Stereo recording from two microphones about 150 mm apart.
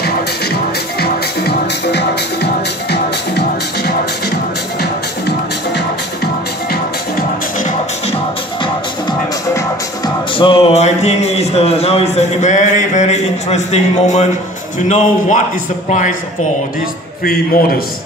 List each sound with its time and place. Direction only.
0.0 s music: 90° left
6.7 s music: 80° left
9.5 s music: 20° left (ahead or behind)
10.3 s a man's voice: 35° left (ahead or behind); by 16.2 s 55° left (ahead or behind)
17.2 s a man's voice: 80° left